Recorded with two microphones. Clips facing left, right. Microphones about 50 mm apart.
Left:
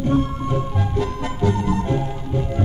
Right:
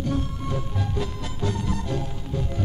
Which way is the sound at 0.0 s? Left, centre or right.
Left.